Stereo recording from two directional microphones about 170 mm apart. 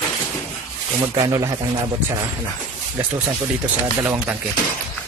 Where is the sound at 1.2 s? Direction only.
20° right (ahead or behind).